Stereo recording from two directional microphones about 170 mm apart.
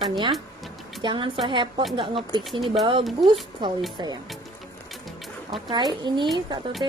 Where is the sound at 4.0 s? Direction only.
25° right (ahead or behind).